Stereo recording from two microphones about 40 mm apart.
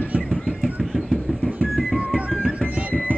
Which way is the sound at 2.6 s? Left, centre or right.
Left.